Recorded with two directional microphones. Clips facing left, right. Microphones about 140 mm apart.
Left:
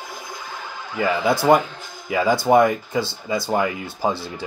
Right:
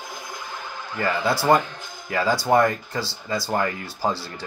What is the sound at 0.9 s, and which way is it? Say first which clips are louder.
Speech: left 3 dB; 10° left (ahead or behind).